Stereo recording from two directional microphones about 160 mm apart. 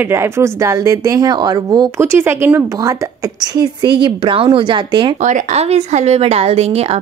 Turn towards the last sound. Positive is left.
turn(degrees=-40)  # may be behind; listen again after turning